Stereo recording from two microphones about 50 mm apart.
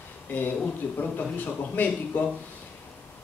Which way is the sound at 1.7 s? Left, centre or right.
Left.